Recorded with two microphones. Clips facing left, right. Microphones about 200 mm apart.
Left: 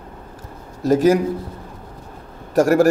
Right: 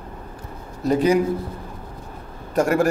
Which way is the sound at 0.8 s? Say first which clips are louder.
Left 4 dB; 40° left (ahead or behind).